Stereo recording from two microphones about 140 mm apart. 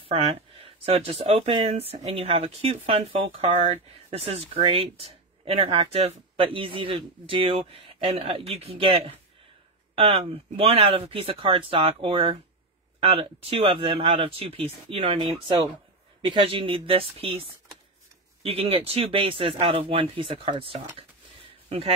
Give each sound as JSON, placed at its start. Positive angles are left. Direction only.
{"t": 0.0, "sound": "speech", "side_deg": -40}